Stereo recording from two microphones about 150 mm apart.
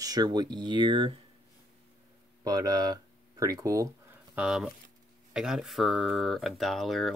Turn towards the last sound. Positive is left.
turn(degrees=0)  # may be behind; listen again after turning